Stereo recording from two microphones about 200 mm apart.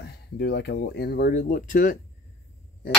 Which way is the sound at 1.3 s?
40° left (ahead or behind).